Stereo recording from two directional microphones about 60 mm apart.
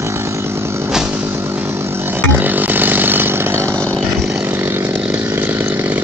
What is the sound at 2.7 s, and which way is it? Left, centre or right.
Chainsaw, right.